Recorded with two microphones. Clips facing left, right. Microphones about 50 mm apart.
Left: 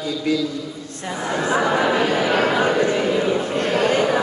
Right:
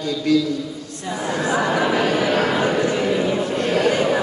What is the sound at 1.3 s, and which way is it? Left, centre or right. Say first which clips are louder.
Speech: left 1 dB; left.